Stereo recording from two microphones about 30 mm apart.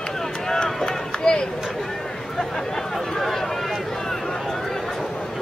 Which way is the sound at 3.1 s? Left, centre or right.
Centre.